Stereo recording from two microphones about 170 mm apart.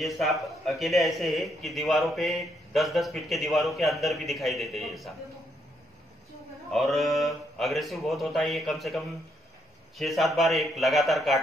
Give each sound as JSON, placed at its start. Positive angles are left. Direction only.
{"t": 0.0, "sound": "a man's voice", "side_deg": 0}
{"t": 6.7, "sound": "a man's voice", "side_deg": 0}